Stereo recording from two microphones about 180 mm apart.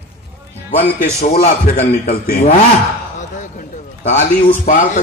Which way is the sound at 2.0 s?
55° left (ahead or behind).